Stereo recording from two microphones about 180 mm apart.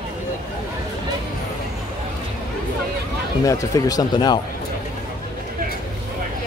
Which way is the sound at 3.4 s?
20° left (ahead or behind).